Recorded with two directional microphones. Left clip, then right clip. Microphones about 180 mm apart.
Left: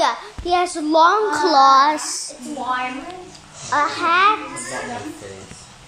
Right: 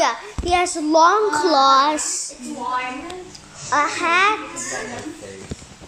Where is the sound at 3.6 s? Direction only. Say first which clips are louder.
Even; 5° right (ahead or behind).